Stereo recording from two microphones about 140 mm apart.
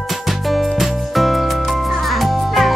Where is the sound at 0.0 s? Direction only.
Centre (ahead or behind).